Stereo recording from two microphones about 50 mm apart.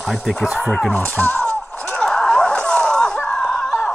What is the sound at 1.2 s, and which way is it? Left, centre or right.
Music, left.